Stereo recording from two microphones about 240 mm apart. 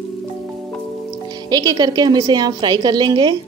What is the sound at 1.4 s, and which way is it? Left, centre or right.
Speech, centre.